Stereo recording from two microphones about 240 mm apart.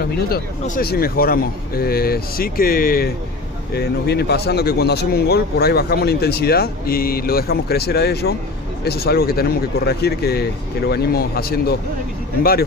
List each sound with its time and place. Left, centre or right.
0.3 s speech: left